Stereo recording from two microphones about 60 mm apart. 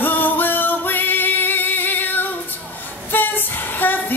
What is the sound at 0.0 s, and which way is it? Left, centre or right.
Music, left.